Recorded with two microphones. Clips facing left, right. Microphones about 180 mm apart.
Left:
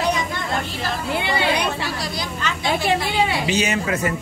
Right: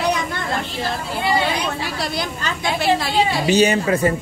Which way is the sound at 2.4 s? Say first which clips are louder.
Right 1 dB; 35° right (ahead or behind).